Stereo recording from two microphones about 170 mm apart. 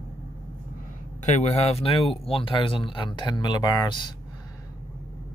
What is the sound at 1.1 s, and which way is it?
Speech, 45° left (ahead or behind).